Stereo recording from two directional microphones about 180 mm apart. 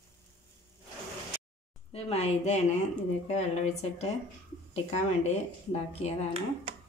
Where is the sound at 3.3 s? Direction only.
40° left (ahead or behind).